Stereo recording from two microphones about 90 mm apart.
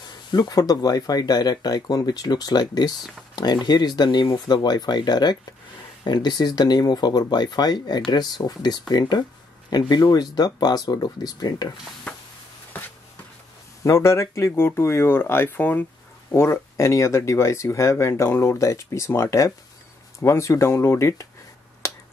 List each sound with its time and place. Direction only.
0.3 s speech: 50° left (ahead or behind)
13.8 s speech: 30° left (ahead or behind)
21.8 s finger snapping: 30° left (ahead or behind)